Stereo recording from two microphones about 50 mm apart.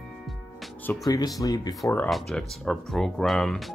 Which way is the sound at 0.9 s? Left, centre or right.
Left.